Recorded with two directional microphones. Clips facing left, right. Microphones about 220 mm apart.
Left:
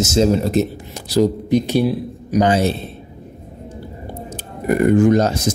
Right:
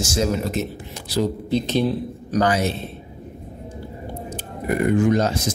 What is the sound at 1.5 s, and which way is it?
Speech, 15° left (ahead or behind).